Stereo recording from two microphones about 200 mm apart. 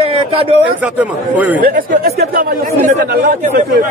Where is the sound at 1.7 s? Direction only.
45° right (ahead or behind).